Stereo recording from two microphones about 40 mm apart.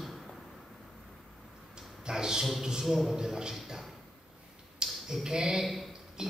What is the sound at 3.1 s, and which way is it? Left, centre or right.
Speech, centre.